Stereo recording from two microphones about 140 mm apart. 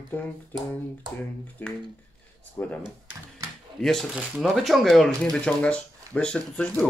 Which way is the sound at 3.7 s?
5° left (ahead or behind).